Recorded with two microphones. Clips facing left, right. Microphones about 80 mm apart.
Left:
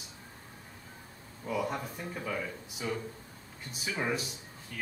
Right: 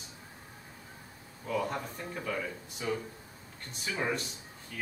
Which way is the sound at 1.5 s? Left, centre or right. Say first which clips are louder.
Even; centre.